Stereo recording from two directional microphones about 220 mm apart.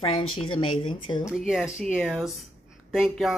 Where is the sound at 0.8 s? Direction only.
25° left (ahead or behind).